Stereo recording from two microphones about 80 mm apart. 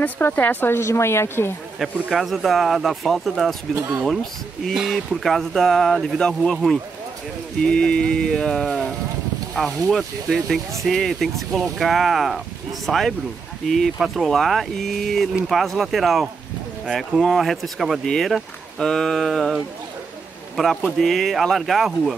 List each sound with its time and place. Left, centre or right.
0.0 s speech: left
1.8 s speech: centre
3.7 s speech: right
4.0 s speech: centre
20.5 s a man's voice: centre